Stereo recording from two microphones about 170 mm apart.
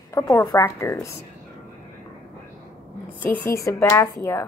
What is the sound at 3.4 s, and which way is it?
A woman's voice, 15° left (ahead or behind).